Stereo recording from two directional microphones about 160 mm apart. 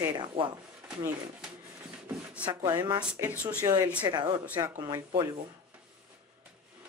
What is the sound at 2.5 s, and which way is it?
Speech, 25° right (ahead or behind).